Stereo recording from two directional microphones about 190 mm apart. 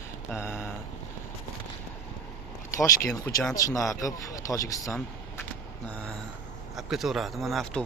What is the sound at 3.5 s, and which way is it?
Speech, 15° left (ahead or behind).